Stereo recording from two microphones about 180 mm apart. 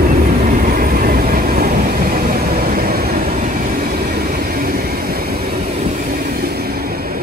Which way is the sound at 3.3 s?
45° right (ahead or behind).